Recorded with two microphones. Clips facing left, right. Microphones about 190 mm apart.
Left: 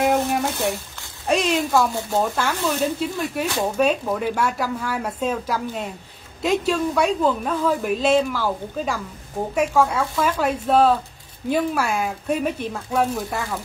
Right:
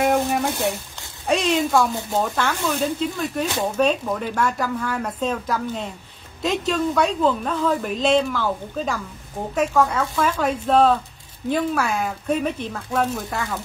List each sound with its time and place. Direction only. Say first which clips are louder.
0.0 s a sound: even; centre (ahead or behind)
1.2 s speech: even; centre (ahead or behind)
1.8 s a woman's voice: even; 15° left (ahead or behind)